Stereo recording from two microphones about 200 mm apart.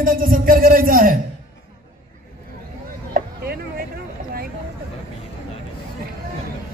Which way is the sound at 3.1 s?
50° right (ahead or behind).